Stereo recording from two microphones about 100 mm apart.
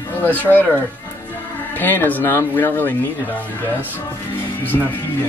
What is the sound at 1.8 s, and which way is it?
Speech, 20° left (ahead or behind).